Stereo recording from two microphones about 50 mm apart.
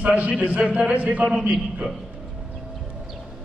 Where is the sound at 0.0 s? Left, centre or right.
Right.